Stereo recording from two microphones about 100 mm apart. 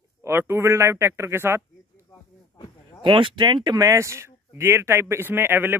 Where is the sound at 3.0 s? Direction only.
55° right (ahead or behind).